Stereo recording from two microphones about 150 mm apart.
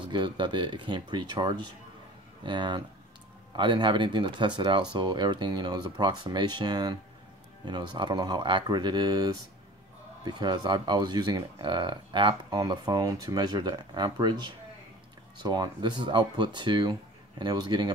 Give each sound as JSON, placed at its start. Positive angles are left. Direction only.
{"t": 0.0, "sound": "speech", "side_deg": -30}
{"t": 15.4, "sound": "speech", "side_deg": -30}